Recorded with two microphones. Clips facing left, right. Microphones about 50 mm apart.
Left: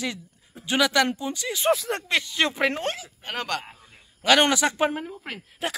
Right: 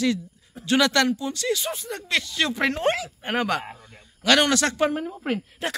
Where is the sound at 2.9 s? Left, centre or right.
Centre.